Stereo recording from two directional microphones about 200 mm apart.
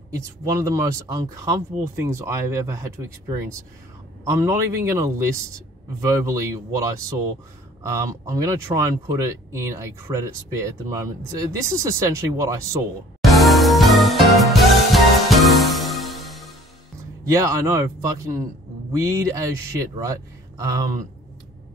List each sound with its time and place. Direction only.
0.2 s speech: 15° right (ahead or behind)
13.2 s music: centre (ahead or behind)
17.3 s speech: 15° right (ahead or behind)